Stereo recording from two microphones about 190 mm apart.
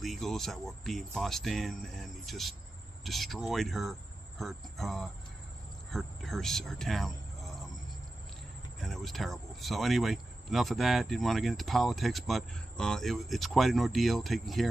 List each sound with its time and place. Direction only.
0.0 s speech: centre (ahead or behind)
8.7 s speech: centre (ahead or behind)